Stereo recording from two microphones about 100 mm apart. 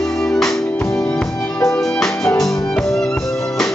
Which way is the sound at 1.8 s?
5° left (ahead or behind).